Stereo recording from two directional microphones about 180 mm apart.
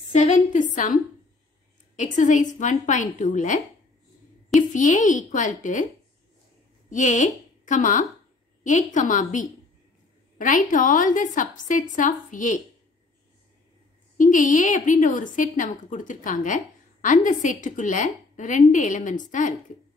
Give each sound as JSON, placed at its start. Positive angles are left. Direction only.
{"t": 0.1, "sound": "a woman's voice", "side_deg": 40}
{"t": 2.0, "sound": "a woman's voice", "side_deg": 45}
{"t": 6.9, "sound": "a woman's voice", "side_deg": 45}
{"t": 14.1, "sound": "a woman's voice", "side_deg": 45}